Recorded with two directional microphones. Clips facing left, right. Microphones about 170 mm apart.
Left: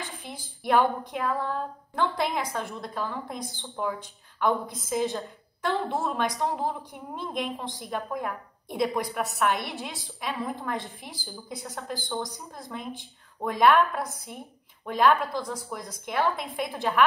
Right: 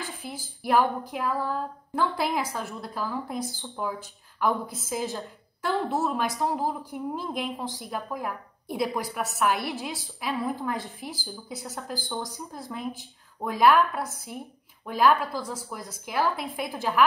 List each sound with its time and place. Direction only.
0.2 s speech: 5° right (ahead or behind)